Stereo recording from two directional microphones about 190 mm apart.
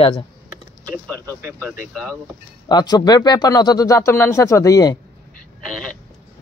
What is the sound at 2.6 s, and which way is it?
Speech, 20° left (ahead or behind).